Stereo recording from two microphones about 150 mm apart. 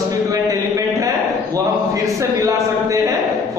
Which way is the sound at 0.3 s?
20° right (ahead or behind).